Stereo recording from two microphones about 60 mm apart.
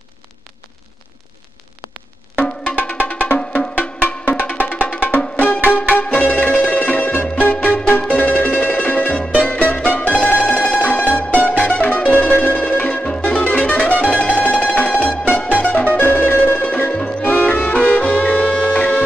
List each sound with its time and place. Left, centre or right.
2.3 s music: left